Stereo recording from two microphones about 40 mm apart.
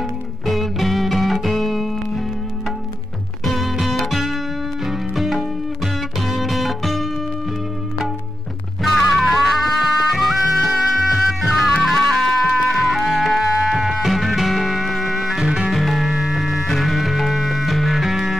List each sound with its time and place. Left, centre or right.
0.5 s music: centre
3.4 s music: centre
9.1 s music: centre
13.4 s music: centre
15.4 s music: centre
15.7 s music: centre